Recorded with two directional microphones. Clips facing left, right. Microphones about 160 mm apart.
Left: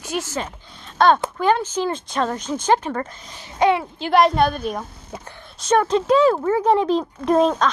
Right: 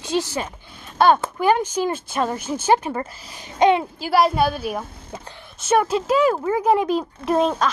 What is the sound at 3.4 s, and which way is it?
Speech, 20° right (ahead or behind).